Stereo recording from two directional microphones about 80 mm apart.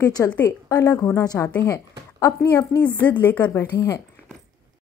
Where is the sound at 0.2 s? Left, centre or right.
Left.